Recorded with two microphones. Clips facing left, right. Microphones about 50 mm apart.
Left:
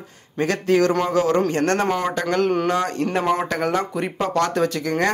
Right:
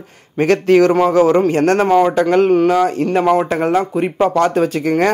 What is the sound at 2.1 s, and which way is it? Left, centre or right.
Speech, right.